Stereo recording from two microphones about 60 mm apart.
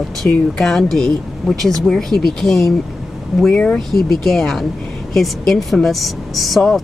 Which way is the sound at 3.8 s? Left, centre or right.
Centre.